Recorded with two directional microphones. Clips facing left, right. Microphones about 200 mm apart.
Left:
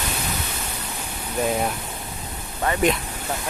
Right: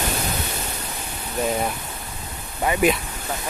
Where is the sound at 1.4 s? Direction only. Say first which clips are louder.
Even; centre (ahead or behind).